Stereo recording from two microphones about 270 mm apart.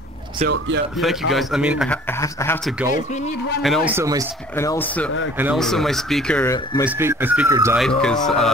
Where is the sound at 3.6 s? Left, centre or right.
Centre.